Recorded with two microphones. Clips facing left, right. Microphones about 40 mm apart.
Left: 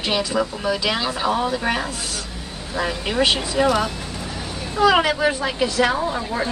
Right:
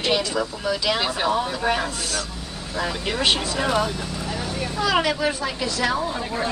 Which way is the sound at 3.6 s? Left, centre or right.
Centre.